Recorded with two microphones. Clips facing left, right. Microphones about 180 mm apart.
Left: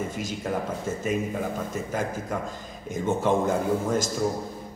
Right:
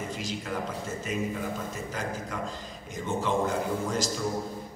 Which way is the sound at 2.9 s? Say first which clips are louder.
Left 5 dB; 50° left (ahead or behind).